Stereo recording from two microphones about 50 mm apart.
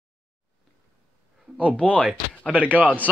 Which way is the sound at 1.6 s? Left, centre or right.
Left.